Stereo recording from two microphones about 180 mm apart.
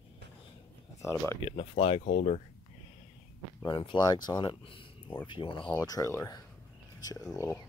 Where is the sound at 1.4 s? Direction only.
35° left (ahead or behind).